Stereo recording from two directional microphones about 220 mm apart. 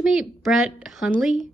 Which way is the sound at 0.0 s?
Centre (ahead or behind).